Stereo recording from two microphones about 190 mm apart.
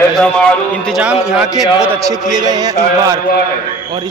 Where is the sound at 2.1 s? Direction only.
20° right (ahead or behind).